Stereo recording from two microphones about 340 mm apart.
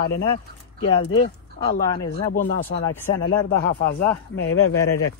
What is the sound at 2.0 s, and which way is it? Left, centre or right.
Speech, centre.